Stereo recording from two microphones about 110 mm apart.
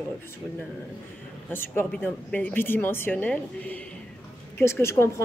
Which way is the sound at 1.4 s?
20° left (ahead or behind).